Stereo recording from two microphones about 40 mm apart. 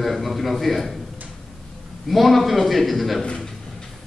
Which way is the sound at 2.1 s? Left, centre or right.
Centre.